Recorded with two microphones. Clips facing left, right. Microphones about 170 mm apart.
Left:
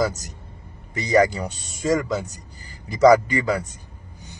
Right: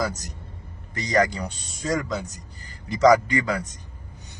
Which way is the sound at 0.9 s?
10° left (ahead or behind).